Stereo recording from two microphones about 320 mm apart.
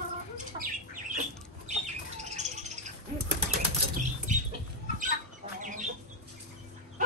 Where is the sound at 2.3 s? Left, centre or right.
Right.